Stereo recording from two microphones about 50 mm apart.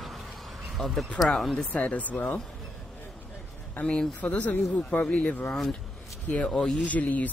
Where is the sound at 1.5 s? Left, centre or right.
Left.